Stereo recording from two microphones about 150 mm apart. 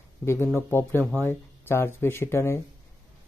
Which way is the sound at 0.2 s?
15° left (ahead or behind).